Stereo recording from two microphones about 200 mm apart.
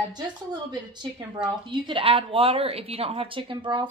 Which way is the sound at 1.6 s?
25° right (ahead or behind).